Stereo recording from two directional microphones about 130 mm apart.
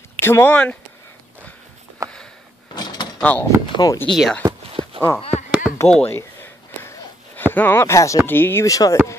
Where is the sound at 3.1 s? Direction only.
10° left (ahead or behind).